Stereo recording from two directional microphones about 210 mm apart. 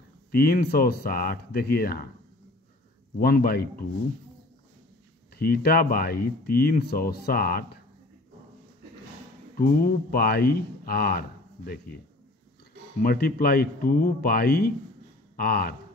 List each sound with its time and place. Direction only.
0.3 s speech: 45° left (ahead or behind)
3.2 s speech: 45° left (ahead or behind)
5.4 s speech: 45° left (ahead or behind)
9.6 s speech: 45° left (ahead or behind)
13.0 s speech: 45° left (ahead or behind)